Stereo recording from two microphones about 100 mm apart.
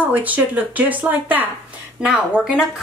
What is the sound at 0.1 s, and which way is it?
A woman's voice, 15° right (ahead or behind).